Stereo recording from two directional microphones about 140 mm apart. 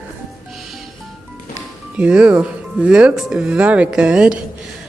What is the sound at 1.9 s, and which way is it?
Speech, 10° right (ahead or behind).